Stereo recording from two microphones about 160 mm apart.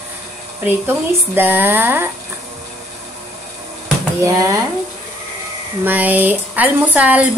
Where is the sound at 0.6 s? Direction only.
15° right (ahead or behind).